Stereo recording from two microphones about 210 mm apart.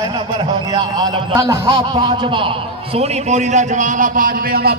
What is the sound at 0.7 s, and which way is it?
A man's voice, 20° right (ahead or behind).